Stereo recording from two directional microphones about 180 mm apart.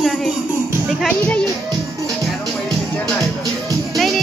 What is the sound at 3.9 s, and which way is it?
Music, centre (ahead or behind).